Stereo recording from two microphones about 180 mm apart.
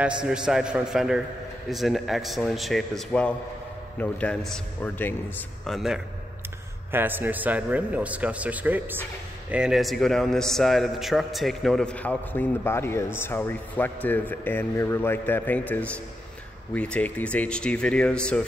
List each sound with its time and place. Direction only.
0.0 s a man's voice: 5° right (ahead or behind)
5.7 s a man's voice: centre (ahead or behind)
6.9 s a man's voice: 10° right (ahead or behind); by 18.4 s 5° left (ahead or behind)